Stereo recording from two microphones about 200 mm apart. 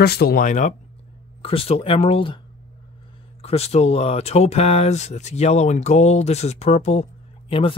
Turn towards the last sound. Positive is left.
turn(degrees=30)  # may be behind; listen again after turning